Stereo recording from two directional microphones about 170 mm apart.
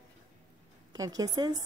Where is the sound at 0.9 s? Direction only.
20° right (ahead or behind).